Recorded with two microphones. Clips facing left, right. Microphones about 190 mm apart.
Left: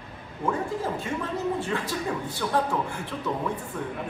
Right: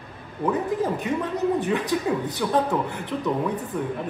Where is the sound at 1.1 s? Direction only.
20° right (ahead or behind).